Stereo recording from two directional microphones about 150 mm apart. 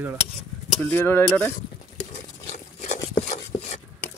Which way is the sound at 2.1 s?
50° left (ahead or behind).